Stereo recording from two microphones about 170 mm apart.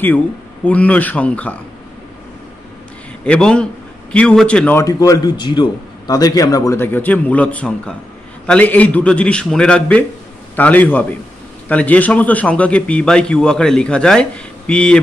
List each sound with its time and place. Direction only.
0.7 s a man's voice: 10° left (ahead or behind)
3.3 s a man's voice: 5° left (ahead or behind)
4.8 s a man's voice: 20° left (ahead or behind)